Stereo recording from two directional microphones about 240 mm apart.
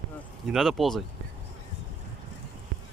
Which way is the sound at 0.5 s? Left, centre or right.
Centre.